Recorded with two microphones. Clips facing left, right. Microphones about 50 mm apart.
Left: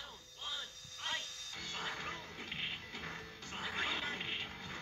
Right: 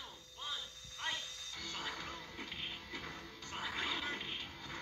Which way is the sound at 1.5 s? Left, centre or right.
Centre.